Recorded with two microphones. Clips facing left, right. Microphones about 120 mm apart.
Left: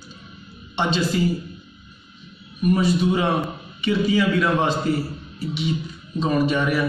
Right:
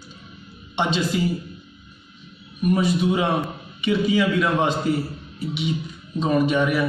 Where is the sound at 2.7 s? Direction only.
5° right (ahead or behind).